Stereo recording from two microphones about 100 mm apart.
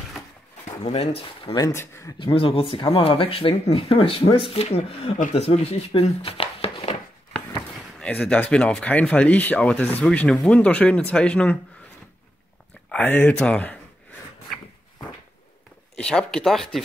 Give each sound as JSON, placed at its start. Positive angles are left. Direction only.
{"t": 0.9, "sound": "speech", "side_deg": 85}
{"t": 1.7, "sound": "speech", "side_deg": 30}
{"t": 2.1, "sound": "speech", "side_deg": 60}
{"t": 8.0, "sound": "speech", "side_deg": 10}
{"t": 13.0, "sound": "speech", "side_deg": 20}
{"t": 16.0, "sound": "speech", "side_deg": 5}